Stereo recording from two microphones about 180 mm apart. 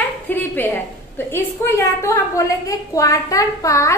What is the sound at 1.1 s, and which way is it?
A woman's voice, 15° left (ahead or behind).